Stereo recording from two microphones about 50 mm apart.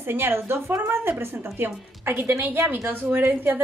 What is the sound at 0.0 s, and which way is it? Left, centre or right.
A woman's voice, right.